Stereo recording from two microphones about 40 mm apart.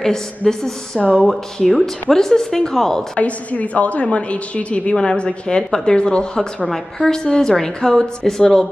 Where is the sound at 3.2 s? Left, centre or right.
Left; by 8.7 s centre.